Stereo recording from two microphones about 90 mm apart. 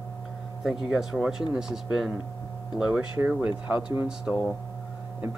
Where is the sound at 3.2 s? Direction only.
15° right (ahead or behind).